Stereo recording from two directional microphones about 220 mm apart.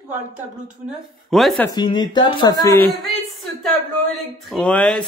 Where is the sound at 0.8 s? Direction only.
Centre (ahead or behind).